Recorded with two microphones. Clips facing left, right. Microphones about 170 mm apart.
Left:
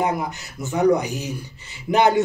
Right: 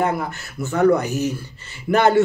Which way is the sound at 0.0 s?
15° left (ahead or behind).